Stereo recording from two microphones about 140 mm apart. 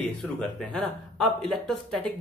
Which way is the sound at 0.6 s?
5° left (ahead or behind).